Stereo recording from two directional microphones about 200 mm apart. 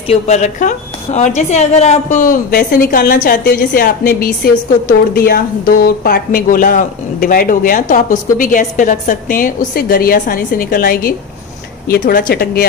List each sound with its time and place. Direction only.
0.1 s a woman's voice: 35° left (ahead or behind)